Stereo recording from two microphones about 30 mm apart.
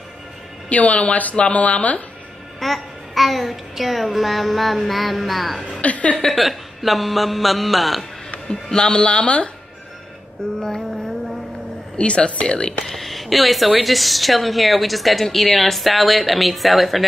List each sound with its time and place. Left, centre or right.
0.7 s speech: left
2.6 s a woman's voice: centre
5.8 s speech: left
6.3 s a woman's voice: centre
8.5 s speech: left
9.0 s speech: left
10.6 s music: centre
12.0 s speech: left
12.8 s a woman's voice: centre